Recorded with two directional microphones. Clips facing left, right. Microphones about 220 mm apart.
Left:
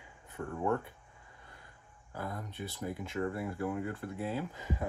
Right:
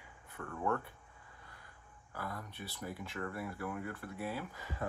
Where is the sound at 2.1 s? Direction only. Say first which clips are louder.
Left 3 dB; 20° left (ahead or behind).